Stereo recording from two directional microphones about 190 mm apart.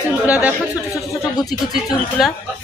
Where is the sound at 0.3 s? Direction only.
5° right (ahead or behind).